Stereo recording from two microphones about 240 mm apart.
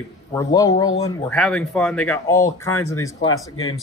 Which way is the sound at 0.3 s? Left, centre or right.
Centre.